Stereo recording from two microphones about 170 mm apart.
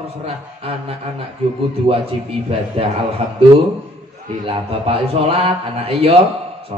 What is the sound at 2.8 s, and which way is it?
Speech, 35° right (ahead or behind).